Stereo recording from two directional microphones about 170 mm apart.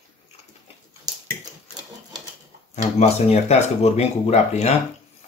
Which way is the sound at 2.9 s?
40° left (ahead or behind).